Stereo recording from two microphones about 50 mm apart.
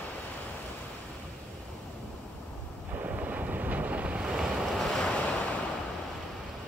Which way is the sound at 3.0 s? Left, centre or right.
Right.